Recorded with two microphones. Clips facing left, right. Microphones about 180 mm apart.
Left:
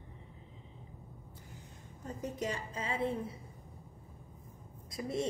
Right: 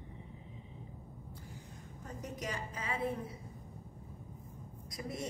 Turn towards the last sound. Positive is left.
turn(degrees=25)  # may be behind; listen again after turning